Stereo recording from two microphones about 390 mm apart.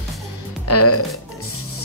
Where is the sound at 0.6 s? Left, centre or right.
Left.